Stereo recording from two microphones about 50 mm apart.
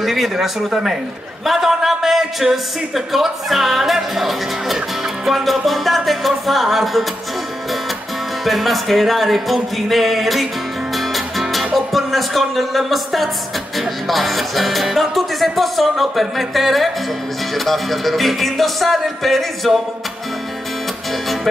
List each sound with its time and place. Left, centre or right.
0.0 s a man's voice: centre
8.5 s a man's voice: centre